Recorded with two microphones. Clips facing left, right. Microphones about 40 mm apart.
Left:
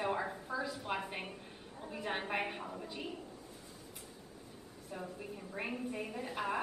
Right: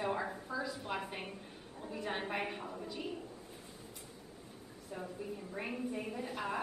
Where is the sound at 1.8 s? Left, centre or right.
Centre.